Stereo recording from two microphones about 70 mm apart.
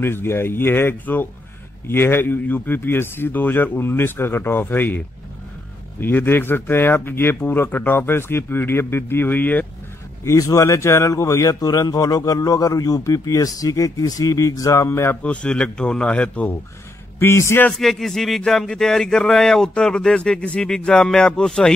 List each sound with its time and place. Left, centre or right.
0.0 s speech: left
10.2 s a man's voice: left
14.9 s speech: left
15.2 s speech: centre
17.2 s speech: left
17.7 s speech: centre